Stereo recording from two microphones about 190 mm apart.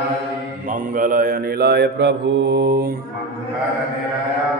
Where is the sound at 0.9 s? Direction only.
45° right (ahead or behind).